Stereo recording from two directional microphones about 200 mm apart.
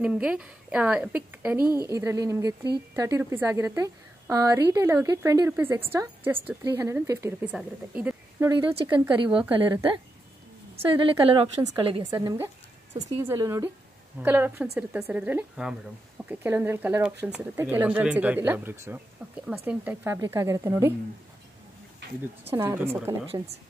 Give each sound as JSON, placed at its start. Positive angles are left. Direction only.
{"t": 0.0, "sound": "a woman's voice", "side_deg": -5}
{"t": 8.5, "sound": "a woman's voice", "side_deg": -25}
{"t": 22.5, "sound": "a woman's voice", "side_deg": -10}